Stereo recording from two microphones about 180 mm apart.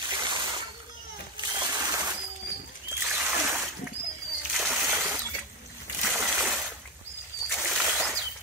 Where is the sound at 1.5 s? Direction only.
20° right (ahead or behind).